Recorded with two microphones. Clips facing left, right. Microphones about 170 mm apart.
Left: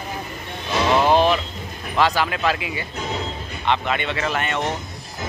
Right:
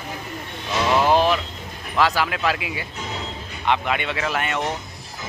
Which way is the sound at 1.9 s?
5° right (ahead or behind).